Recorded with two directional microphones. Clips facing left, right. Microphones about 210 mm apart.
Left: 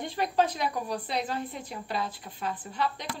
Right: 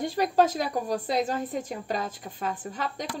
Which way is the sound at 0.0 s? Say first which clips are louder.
Right 4 dB; 40° right (ahead or behind).